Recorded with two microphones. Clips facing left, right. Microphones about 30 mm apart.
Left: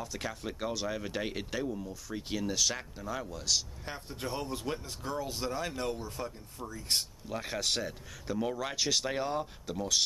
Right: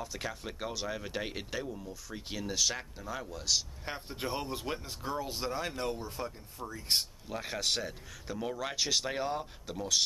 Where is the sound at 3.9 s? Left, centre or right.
Centre.